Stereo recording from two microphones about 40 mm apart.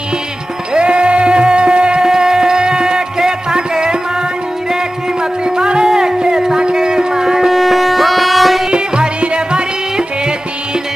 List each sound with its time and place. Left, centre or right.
0.7 s music: right
2.0 s music: centre
7.5 s music: centre
8.6 s music: right